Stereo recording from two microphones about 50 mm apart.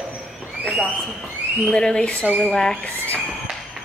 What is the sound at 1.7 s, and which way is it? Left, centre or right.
Speech, centre.